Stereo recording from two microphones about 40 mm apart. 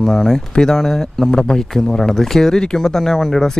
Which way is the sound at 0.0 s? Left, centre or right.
Centre.